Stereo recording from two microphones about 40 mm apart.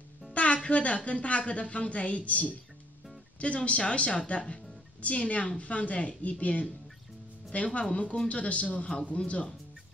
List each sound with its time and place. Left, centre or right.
0.3 s music: left
0.7 s a woman's voice: left